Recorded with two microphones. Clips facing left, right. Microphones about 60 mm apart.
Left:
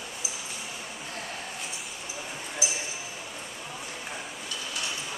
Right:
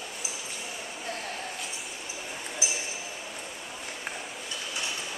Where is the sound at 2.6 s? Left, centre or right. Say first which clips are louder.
Left 1 dB; right.